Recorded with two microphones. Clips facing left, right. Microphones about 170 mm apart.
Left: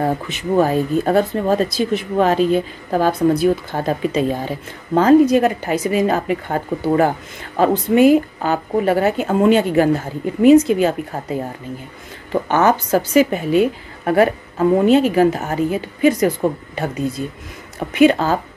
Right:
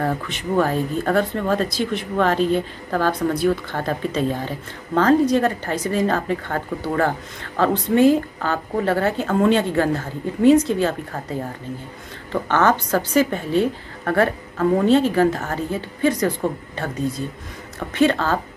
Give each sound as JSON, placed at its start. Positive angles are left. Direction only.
{"t": 0.0, "sound": "speech", "side_deg": 20}